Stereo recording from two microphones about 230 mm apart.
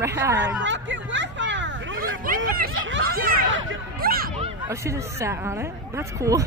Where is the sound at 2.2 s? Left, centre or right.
Right.